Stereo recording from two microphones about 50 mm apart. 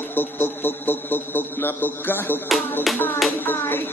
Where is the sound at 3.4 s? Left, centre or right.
Left.